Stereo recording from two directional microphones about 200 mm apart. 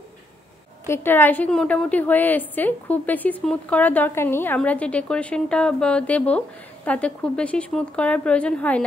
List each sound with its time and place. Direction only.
0.8 s a woman's voice: 10° left (ahead or behind)